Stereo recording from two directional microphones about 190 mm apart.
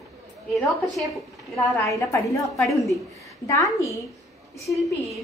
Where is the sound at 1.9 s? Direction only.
15° left (ahead or behind).